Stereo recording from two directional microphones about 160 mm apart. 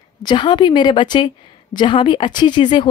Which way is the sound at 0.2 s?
30° left (ahead or behind).